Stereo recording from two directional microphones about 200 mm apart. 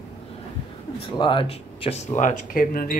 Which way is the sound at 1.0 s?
25° left (ahead or behind).